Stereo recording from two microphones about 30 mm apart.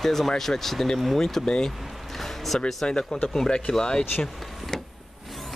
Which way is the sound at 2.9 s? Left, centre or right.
Left.